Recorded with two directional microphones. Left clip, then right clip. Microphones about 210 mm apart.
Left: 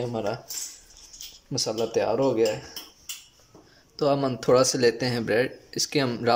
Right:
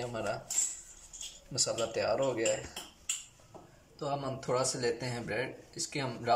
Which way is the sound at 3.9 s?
50° left (ahead or behind).